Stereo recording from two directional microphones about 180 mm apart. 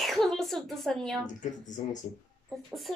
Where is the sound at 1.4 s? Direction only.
45° left (ahead or behind).